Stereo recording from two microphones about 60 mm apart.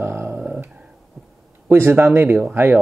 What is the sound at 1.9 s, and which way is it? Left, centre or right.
Speech, right.